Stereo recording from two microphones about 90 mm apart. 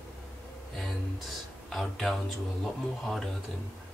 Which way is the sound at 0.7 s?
Centre (ahead or behind).